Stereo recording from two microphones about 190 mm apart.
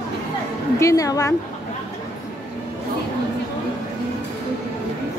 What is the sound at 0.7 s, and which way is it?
Speech, 15° left (ahead or behind).